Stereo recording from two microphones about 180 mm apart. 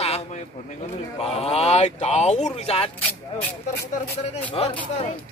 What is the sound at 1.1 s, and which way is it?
Speech, 35° left (ahead or behind).